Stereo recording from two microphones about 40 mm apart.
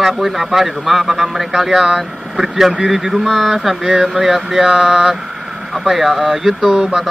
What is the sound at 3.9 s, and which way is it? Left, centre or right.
Speech, right.